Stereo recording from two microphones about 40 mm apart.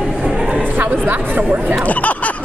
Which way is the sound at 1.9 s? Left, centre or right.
Left.